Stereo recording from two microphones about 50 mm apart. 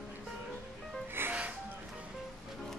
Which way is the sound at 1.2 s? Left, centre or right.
Right.